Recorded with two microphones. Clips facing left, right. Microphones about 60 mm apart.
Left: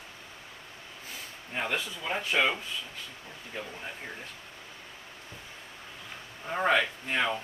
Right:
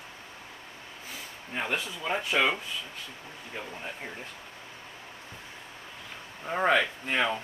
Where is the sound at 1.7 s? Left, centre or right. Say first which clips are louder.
Right 4 dB; centre.